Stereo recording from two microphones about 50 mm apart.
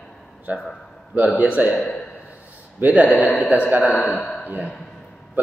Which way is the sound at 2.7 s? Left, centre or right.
Right.